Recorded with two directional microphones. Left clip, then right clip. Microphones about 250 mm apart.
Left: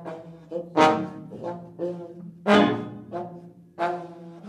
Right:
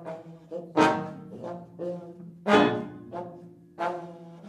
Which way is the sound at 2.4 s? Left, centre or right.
Centre.